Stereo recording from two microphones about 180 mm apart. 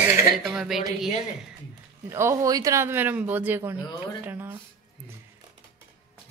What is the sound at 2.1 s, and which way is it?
Speech, 15° right (ahead or behind).